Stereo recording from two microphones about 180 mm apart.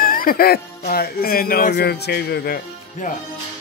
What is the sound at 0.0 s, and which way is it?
Speech, 50° left (ahead or behind).